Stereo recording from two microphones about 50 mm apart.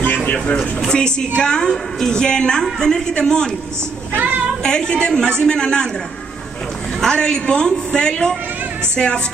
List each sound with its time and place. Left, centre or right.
0.0 s a sound: left
0.6 s a woman's voice: centre
4.1 s a sound: right
4.6 s a woman's voice: centre
7.0 s a woman's voice: centre
8.9 s music: centre